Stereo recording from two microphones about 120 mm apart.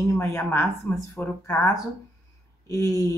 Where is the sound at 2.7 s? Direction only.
30° left (ahead or behind).